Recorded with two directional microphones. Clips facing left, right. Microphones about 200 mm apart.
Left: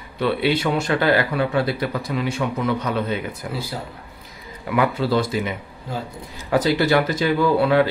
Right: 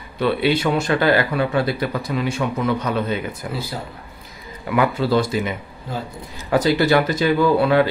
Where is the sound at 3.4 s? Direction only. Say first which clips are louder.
Right 1 dB; 50° right (ahead or behind).